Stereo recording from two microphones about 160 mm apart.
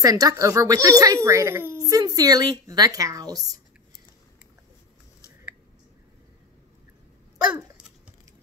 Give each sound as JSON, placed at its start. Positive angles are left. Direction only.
{"t": 0.0, "sound": "speech", "side_deg": -20}